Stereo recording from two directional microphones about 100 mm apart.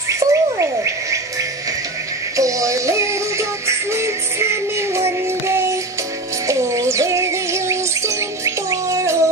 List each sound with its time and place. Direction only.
0.1 s insect: 30° right (ahead or behind)
2.3 s music: 30° right (ahead or behind)